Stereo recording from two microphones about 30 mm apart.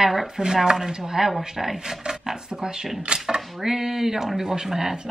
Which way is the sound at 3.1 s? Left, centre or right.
Right.